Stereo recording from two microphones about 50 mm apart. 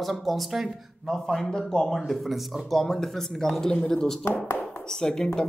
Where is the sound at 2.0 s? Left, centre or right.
Centre.